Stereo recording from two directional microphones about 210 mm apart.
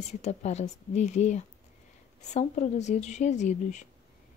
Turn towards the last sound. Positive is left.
turn(degrees=35)  # may be behind; listen again after turning